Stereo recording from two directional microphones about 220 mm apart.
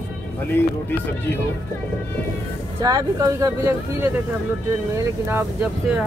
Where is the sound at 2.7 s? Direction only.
15° right (ahead or behind).